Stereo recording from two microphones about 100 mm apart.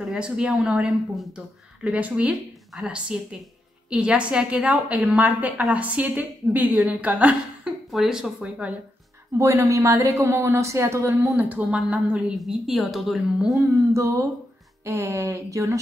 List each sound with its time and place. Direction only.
0.0 s speech: 10° right (ahead or behind)
9.4 s a woman's voice: 30° right (ahead or behind)
11.3 s a woman's voice: 15° right (ahead or behind)
13.9 s a woman's voice: 30° right (ahead or behind)